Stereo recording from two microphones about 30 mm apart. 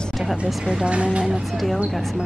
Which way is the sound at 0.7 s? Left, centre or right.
Right.